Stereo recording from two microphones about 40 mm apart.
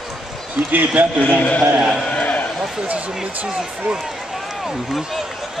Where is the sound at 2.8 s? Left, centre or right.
Right.